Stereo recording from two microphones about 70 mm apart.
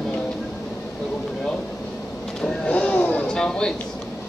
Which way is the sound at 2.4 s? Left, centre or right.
Centre.